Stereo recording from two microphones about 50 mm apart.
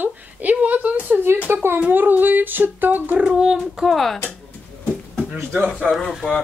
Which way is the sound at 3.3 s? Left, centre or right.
Centre.